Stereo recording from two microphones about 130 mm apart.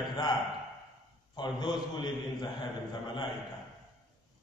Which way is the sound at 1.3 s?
35° left (ahead or behind).